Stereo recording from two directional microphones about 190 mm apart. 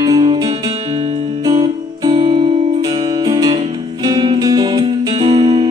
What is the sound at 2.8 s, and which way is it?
Music, 20° right (ahead or behind).